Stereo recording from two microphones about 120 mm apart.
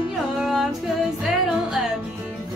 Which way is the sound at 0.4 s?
Centre (ahead or behind).